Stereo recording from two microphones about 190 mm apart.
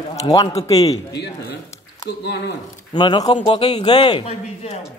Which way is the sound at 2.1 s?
55° left (ahead or behind).